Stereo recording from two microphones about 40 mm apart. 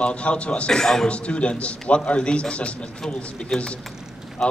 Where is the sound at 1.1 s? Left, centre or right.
Left.